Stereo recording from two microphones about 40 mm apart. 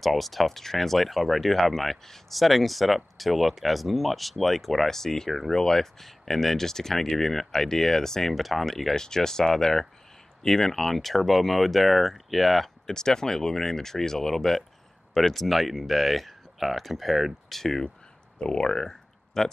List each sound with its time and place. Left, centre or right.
0.0 s speech: centre
8.4 s speech: centre
8.9 s speech: centre
18.4 s speech: centre